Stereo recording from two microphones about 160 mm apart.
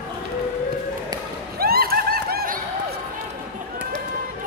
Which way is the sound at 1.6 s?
70° right (ahead or behind).